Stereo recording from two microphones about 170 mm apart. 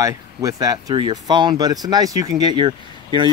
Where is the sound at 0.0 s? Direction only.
20° right (ahead or behind).